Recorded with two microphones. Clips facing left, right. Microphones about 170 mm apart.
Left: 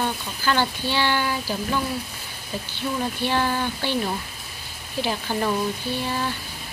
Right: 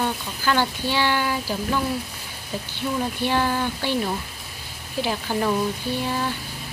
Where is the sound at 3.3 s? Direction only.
5° right (ahead or behind).